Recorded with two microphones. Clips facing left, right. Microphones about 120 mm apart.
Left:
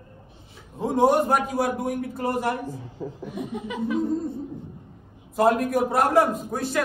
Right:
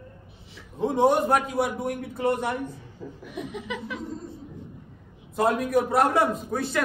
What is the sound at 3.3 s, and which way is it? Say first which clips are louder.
Chuckle: left 1 dB; 90° right.